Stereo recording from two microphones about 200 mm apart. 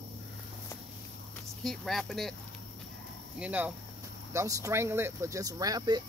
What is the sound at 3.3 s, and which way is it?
Speech, 5° right (ahead or behind).